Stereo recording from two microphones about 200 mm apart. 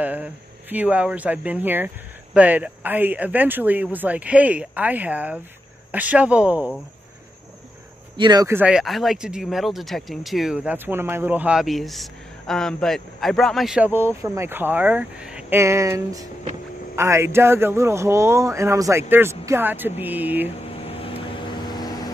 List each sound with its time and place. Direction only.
0.0 s speech: 10° right (ahead or behind)
8.2 s speech: 20° right (ahead or behind)
20.4 s vehicle: 30° left (ahead or behind)